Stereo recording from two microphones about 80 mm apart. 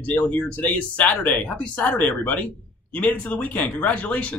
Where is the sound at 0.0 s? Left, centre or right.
Left.